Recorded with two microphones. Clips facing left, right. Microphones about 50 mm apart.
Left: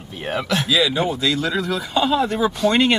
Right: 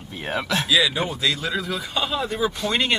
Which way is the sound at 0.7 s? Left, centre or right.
Centre.